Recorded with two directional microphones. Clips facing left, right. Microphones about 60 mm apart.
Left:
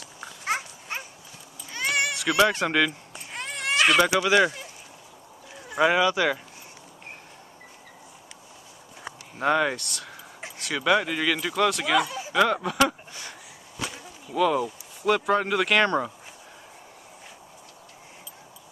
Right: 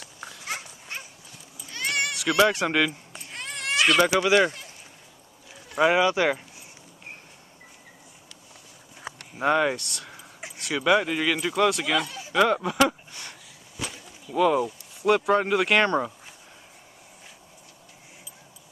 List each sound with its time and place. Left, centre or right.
1.7 s cat: centre
2.6 s speech: centre
3.3 s a sound: centre
4.2 s speech: centre
5.9 s speech: right
9.0 s speech: centre
11.9 s speech: centre
13.1 s a sound: centre
13.8 s whip: centre
14.3 s speech: centre